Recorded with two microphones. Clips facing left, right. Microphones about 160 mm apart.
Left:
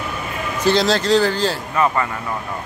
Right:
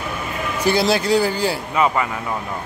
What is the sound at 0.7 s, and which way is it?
Speech, 10° right (ahead or behind).